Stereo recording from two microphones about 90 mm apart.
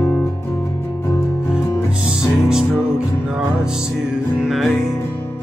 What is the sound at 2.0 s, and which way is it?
Music, 5° right (ahead or behind).